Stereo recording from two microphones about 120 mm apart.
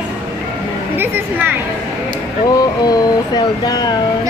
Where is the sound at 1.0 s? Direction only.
15° right (ahead or behind).